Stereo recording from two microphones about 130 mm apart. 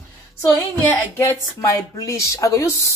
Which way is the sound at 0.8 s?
20° left (ahead or behind).